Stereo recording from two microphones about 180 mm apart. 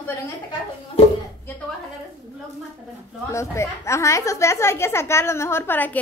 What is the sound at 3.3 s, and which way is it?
A woman's voice, 15° left (ahead or behind).